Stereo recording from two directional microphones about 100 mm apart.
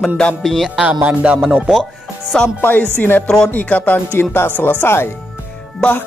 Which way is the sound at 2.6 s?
20° left (ahead or behind).